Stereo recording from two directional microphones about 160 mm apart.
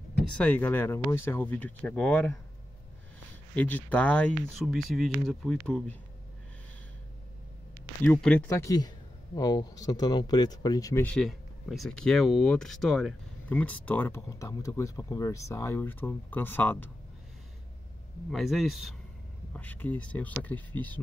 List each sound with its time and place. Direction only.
0.3 s speech: 5° left (ahead or behind)
3.5 s speech: 10° left (ahead or behind)
8.0 s speech: 10° left (ahead or behind)
11.1 s speech: centre (ahead or behind)
18.3 s speech: centre (ahead or behind)
19.5 s speech: 10° left (ahead or behind)